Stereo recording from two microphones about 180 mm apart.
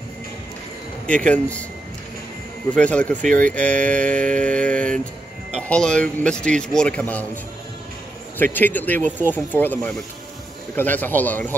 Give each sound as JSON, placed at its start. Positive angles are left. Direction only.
{"t": 1.0, "sound": "speech", "side_deg": 5}
{"t": 2.7, "sound": "speech", "side_deg": 5}
{"t": 3.2, "sound": "speech", "side_deg": -45}
{"t": 3.4, "sound": "speech", "side_deg": 5}
{"t": 8.5, "sound": "speech", "side_deg": 10}